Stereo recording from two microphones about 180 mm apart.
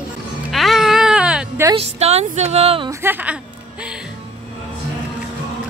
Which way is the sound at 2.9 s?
15° right (ahead or behind).